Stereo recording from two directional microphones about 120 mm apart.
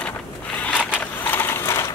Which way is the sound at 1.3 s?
20° left (ahead or behind).